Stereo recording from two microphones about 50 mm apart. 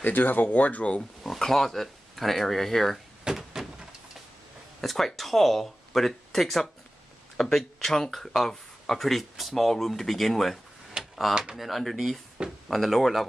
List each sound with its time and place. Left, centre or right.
0.0 s speech: left
1.2 s speech: centre
3.3 s door: centre
4.8 s speech: centre
11.0 s a sound: centre
11.5 s speech: centre